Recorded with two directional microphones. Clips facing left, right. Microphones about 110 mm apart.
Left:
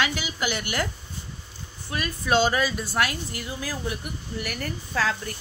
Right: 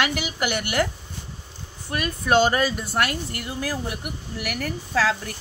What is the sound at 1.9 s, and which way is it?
A woman's voice, 55° right (ahead or behind).